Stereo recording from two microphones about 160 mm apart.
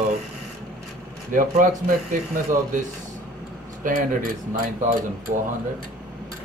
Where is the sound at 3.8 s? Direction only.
60° right (ahead or behind).